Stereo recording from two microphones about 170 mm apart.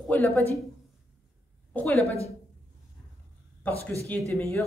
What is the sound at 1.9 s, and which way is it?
Speech, 35° left (ahead or behind).